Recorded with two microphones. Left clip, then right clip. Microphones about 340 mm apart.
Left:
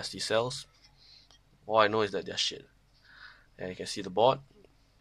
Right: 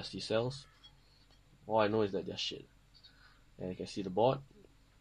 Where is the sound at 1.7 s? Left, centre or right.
Left.